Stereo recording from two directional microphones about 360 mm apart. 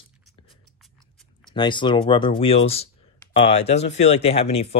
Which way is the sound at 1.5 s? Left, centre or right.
Centre.